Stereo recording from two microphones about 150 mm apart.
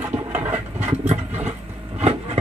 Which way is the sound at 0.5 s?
50° right (ahead or behind).